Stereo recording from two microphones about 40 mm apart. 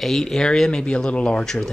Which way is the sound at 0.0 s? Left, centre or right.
Centre.